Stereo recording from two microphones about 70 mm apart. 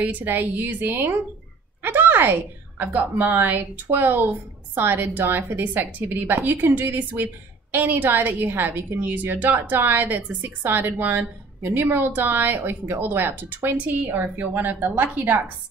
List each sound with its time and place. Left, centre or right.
0.0 s a woman's voice: right
1.8 s a sound: right
3.2 s a woman's voice: right